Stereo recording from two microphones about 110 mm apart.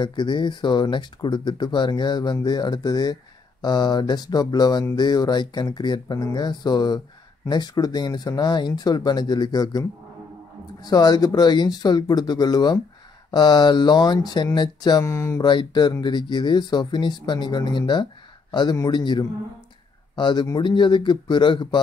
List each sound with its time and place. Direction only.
0.0 s speech: 45° left (ahead or behind); by 15.4 s 25° left (ahead or behind)
15.4 s speech: 45° left (ahead or behind)